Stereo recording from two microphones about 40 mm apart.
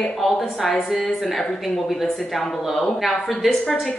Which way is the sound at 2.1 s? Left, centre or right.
Centre.